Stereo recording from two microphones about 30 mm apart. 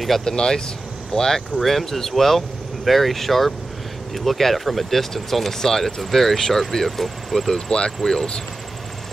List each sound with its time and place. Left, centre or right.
0.2 s speech: left
1.6 s speech: centre